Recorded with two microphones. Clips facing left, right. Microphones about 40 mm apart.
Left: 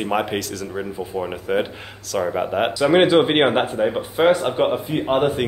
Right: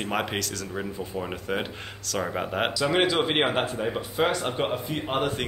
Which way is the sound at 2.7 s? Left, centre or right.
Left.